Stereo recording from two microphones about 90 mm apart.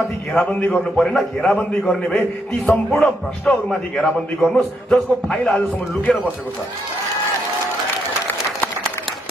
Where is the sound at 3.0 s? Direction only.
15° left (ahead or behind).